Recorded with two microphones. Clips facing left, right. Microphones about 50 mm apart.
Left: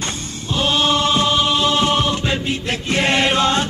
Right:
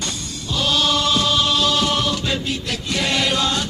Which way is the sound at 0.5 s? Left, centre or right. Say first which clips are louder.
Left 2 dB; left.